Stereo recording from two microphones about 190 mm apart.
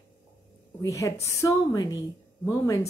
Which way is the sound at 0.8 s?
15° left (ahead or behind).